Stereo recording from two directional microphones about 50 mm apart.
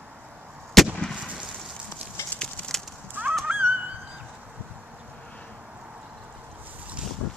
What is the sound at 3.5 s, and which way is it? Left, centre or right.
Music, right.